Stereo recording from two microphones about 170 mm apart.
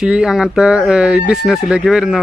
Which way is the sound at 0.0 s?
5° right (ahead or behind).